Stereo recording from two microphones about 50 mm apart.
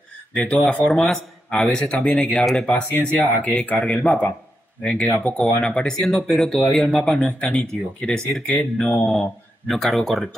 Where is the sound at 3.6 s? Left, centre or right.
Left.